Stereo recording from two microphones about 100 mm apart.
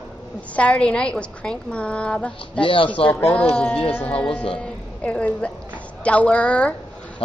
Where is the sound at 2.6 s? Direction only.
60° left (ahead or behind).